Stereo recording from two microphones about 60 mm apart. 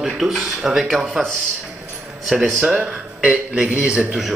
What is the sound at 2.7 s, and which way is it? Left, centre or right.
A man's voice, right.